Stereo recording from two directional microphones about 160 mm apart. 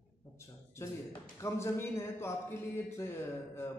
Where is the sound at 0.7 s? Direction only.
15° left (ahead or behind).